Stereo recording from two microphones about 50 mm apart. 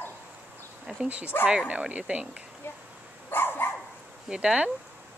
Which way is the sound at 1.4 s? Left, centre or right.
Right.